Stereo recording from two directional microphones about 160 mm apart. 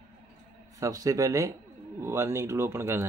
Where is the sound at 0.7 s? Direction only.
20° right (ahead or behind).